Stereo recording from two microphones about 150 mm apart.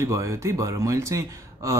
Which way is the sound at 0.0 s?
20° right (ahead or behind).